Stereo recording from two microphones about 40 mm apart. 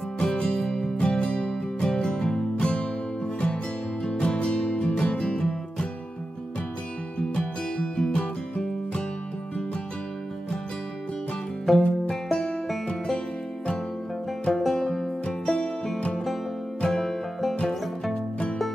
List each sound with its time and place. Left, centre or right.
0.2 s music: left
4.0 s music: left
7.2 s music: left
11.7 s music: centre
12.1 s music: centre
14.5 s music: centre
15.2 s music: left
16.8 s music: centre